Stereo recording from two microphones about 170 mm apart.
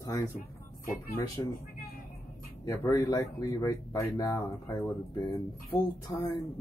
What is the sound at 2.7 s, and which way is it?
Speech, 20° left (ahead or behind).